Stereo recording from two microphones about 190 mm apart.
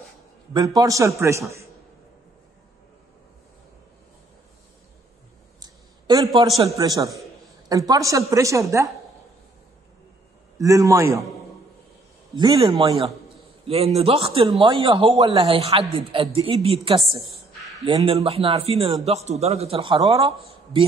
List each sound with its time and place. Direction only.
0.5 s a woman's voice: 20° right (ahead or behind)
5.6 s a sound: 20° right (ahead or behind)
6.8 s a man's voice: 20° right (ahead or behind)
10.6 s a woman's voice: 15° right (ahead or behind)
12.4 s a man's voice: 25° right (ahead or behind)
20.0 s a man's voice: 20° right (ahead or behind)